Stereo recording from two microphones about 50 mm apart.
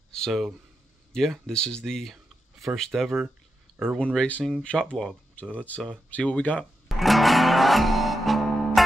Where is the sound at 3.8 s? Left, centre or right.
Centre.